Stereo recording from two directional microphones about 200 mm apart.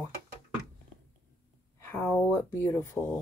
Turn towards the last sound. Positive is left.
turn(degrees=10)  # may be behind; listen again after turning